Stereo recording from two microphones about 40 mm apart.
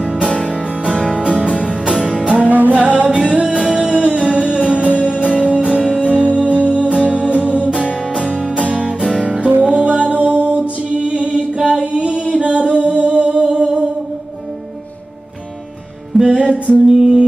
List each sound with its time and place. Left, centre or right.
0.1 s music: centre
2.3 s music: right
3.5 s music: right
6.0 s music: right
8.1 s music: centre
11.6 s singing: right
16.3 s music: centre
16.8 s music: centre